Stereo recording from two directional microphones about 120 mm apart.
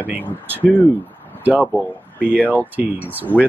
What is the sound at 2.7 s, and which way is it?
Speech, 15° right (ahead or behind).